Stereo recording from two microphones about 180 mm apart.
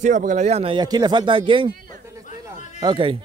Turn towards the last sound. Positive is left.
turn(degrees=-25)  # may be behind; listen again after turning